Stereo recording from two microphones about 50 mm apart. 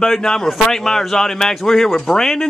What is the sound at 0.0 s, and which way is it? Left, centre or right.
Speech, centre.